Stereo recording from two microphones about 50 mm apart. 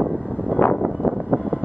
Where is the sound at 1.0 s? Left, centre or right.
Right.